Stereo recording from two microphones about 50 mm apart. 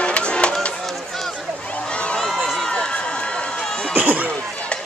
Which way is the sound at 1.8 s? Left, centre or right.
Centre.